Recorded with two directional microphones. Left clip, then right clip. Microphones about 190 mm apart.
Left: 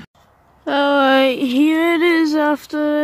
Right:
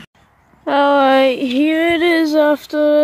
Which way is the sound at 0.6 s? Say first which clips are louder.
Right 3 dB; 5° left (ahead or behind).